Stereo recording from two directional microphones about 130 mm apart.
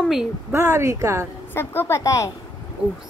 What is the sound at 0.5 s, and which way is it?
Speech, 20° right (ahead or behind).